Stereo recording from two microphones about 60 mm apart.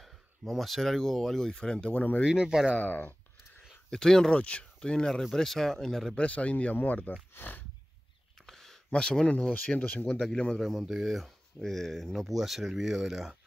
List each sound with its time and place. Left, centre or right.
0.0 s speech: centre
2.0 s speech: left
2.2 s speech: centre
2.7 s speech: left
3.9 s speech: centre
6.1 s speech: left
8.5 s speech: centre
9.8 s speech: left
10.6 s speech: centre